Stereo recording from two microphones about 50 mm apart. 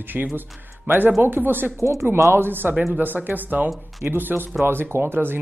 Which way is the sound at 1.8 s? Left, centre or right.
Right.